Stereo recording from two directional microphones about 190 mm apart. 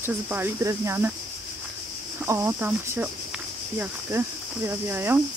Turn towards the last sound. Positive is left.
turn(degrees=-10)  # may be behind; listen again after turning